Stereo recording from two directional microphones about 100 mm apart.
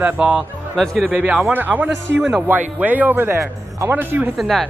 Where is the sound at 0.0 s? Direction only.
10° right (ahead or behind).